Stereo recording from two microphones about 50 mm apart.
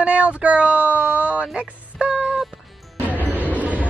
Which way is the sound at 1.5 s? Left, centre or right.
Right.